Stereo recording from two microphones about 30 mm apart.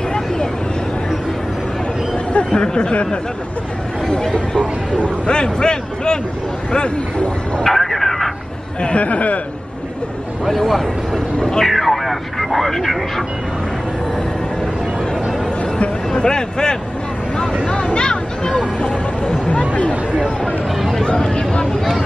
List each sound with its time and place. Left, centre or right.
2.3 s chatter: left
4.3 s speech: left
7.6 s vehicle: centre
8.8 s speech: left
11.6 s vehicle: centre
16.2 s speech: left
17.4 s speech: left
19.9 s speech: right
21.0 s speech: left